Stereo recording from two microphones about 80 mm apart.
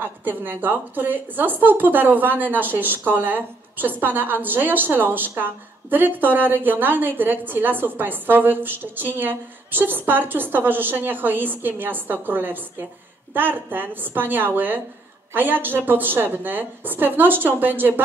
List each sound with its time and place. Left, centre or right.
0.0 s a woman's voice: right